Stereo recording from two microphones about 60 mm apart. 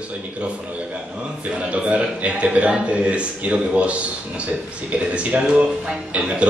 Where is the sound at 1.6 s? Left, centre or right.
Right.